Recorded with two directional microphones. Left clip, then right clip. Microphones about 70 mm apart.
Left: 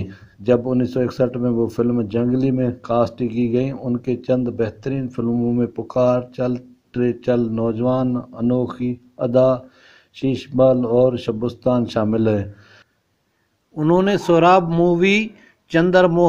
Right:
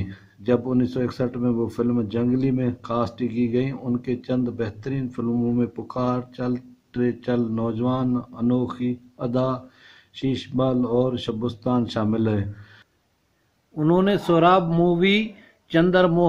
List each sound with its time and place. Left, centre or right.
0.0 s a sound: left
0.7 s speech: left
3.7 s speech: centre
4.0 s speech: left
5.6 s speech: left
10.6 s speech: left
13.7 s speech: left